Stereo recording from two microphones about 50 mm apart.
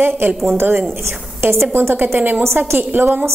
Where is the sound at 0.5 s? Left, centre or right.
Right.